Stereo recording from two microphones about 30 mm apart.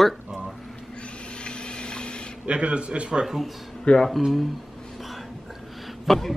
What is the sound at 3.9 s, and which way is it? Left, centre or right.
Speech, left.